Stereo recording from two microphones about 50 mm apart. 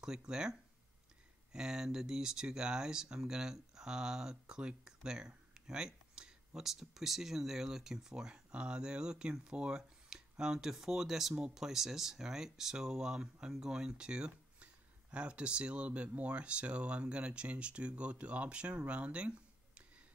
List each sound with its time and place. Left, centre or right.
0.0 s speech: centre